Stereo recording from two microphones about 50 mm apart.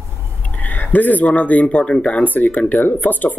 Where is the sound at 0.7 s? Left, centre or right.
Left.